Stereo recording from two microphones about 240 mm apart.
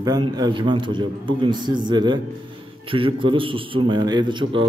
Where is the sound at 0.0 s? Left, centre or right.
Centre.